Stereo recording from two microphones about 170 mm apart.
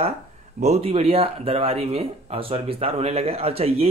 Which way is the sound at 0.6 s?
40° right (ahead or behind).